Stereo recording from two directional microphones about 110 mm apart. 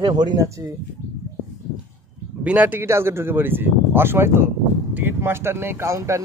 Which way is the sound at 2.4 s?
15° right (ahead or behind).